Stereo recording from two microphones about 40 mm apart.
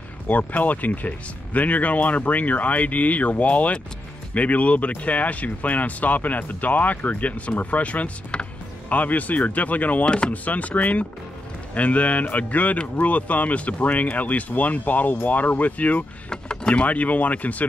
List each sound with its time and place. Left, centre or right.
0.3 s speech: left
10.0 s speech: left
10.3 s speech: left
16.3 s speech: left